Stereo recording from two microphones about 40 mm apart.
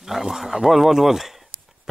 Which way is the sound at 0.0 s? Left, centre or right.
Centre.